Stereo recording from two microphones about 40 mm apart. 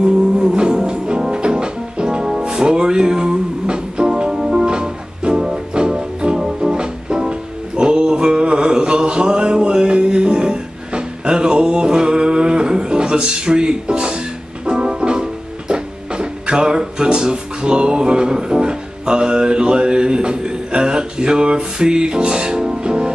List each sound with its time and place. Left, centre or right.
0.0 s music: right
4.6 s music: right